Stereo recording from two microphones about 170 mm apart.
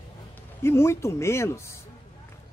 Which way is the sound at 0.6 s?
15° left (ahead or behind).